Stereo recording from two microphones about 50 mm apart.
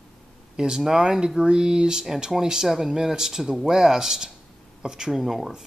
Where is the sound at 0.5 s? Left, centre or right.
Centre.